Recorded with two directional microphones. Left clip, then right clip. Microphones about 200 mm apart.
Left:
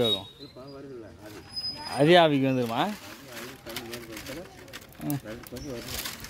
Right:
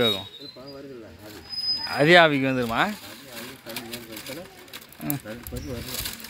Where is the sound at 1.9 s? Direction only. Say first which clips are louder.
Right 3 dB; 15° left (ahead or behind).